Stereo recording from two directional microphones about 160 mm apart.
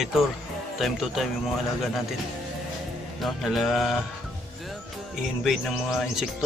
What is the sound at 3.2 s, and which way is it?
Speech, centre (ahead or behind).